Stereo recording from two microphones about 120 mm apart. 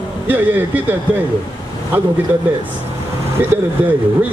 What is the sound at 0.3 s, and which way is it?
Speech, 15° right (ahead or behind).